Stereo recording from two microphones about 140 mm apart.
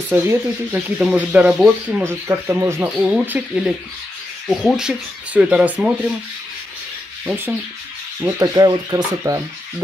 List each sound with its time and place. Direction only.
0.1 s speech: 15° right (ahead or behind)
7.2 s speech: 15° right (ahead or behind)
8.2 s speech: 25° right (ahead or behind)